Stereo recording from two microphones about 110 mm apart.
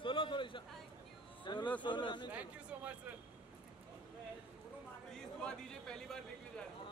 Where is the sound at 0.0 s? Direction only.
50° left (ahead or behind).